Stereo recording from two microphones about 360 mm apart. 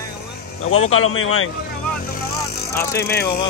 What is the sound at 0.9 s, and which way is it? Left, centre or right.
Speech, left.